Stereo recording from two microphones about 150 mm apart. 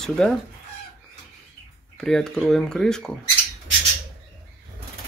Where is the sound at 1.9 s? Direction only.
5° left (ahead or behind).